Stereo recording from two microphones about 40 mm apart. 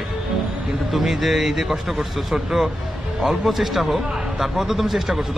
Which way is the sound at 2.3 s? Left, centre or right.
Centre.